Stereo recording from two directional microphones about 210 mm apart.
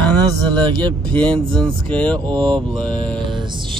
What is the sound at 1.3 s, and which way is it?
Speech, 5° left (ahead or behind).